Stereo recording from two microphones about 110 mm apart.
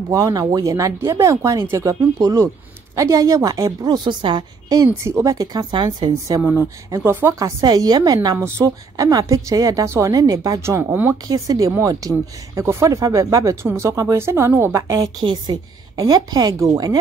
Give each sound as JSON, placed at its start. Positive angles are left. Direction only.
{"t": 0.1, "sound": "speech", "side_deg": -35}
{"t": 4.8, "sound": "speech", "side_deg": -25}
{"t": 6.4, "sound": "speech", "side_deg": -20}
{"t": 7.3, "sound": "speech", "side_deg": -35}
{"t": 8.4, "sound": "speech", "side_deg": -25}
{"t": 11.2, "sound": "speech", "side_deg": -30}
{"t": 15.0, "sound": "speech", "side_deg": -45}